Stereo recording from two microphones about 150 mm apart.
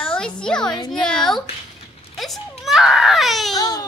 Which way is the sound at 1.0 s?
30° left (ahead or behind).